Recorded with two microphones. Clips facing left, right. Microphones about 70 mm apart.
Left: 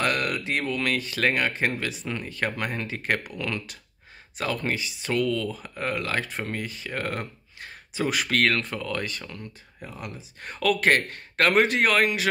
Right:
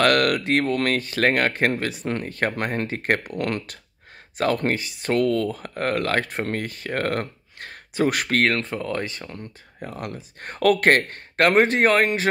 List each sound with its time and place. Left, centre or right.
0.0 s speech: right
8.4 s speech: right